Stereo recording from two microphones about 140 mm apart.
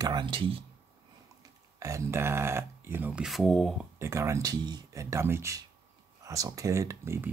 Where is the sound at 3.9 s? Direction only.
20° right (ahead or behind).